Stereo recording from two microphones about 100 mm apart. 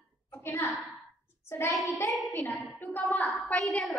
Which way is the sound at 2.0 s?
Centre (ahead or behind).